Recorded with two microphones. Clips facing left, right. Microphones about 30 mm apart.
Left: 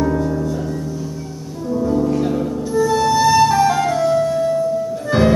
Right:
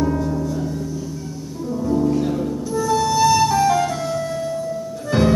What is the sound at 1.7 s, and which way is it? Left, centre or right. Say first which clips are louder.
Music: left 2 dB; centre.